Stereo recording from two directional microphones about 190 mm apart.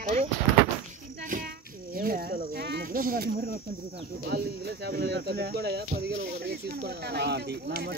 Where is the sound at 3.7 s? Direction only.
55° right (ahead or behind).